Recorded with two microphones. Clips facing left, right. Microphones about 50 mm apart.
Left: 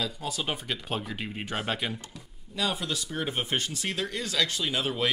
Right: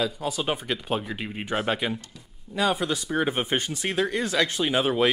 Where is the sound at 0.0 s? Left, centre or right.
Centre.